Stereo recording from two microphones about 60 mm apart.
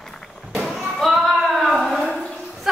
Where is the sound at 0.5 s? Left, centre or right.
Centre.